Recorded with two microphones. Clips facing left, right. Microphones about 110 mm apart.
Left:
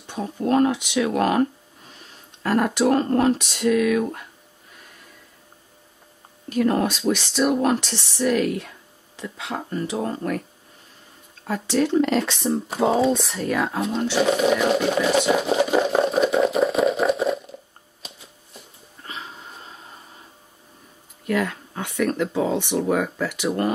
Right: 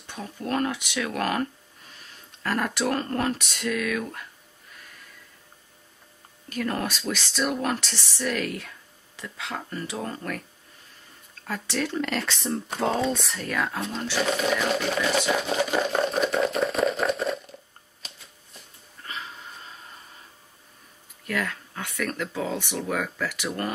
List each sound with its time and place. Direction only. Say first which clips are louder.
0.0 s speech: left 8 dB; 20° left (ahead or behind)
6.5 s speech: left 8 dB; 20° left (ahead or behind)
8.5 s a sound: left 6 dB; 25° left (ahead or behind)
9.6 s speech: left 8 dB; 25° left (ahead or behind)
11.7 s speech: left 9 dB; 20° left (ahead or behind)
12.3 s speech: left 5 dB; 5° left (ahead or behind)
15.0 s a sound: left 5 dB; 10° left (ahead or behind)
19.0 s wheeze: left 1 dB; 25° left (ahead or behind)
21.3 s speech: left 6 dB; 20° left (ahead or behind)